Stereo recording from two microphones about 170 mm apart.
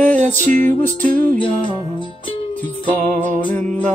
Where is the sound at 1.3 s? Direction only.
30° left (ahead or behind).